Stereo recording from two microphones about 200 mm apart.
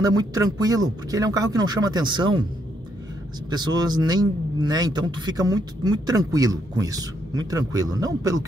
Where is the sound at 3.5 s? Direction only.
20° right (ahead or behind).